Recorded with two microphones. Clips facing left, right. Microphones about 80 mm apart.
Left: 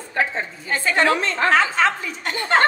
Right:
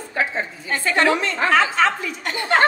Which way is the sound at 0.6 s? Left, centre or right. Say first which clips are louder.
Left 1 dB; centre.